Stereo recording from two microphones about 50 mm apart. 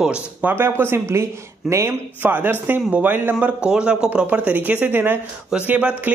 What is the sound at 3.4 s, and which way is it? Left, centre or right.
Speech, right.